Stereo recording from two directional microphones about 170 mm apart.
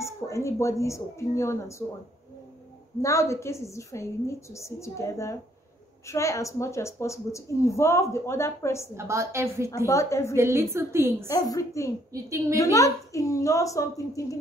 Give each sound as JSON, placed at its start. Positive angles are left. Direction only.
{"t": 0.0, "sound": "a woman's voice", "side_deg": 15}
{"t": 3.0, "sound": "a woman's voice", "side_deg": 20}
{"t": 8.9, "sound": "a woman's voice", "side_deg": -15}
{"t": 9.8, "sound": "a woman's voice", "side_deg": 15}
{"t": 10.3, "sound": "a woman's voice", "side_deg": -15}
{"t": 11.2, "sound": "a woman's voice", "side_deg": 20}
{"t": 12.1, "sound": "a woman's voice", "side_deg": -20}
{"t": 12.5, "sound": "a woman's voice", "side_deg": 20}